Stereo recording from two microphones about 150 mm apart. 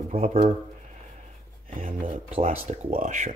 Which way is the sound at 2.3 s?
45° right (ahead or behind).